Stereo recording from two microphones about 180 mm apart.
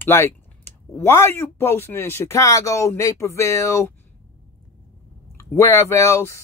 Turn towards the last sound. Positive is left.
turn(degrees=15)  # may be behind; listen again after turning